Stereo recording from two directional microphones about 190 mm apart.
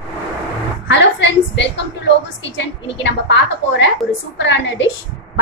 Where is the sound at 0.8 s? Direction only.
70° left (ahead or behind).